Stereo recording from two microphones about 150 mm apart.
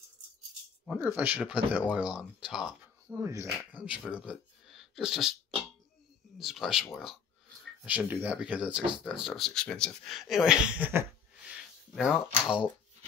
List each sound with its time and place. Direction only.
0.8 s speech: 10° right (ahead or behind)
3.7 s speech: 10° right (ahead or behind)